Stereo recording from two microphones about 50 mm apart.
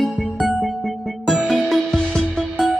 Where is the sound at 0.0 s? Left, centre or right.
Centre.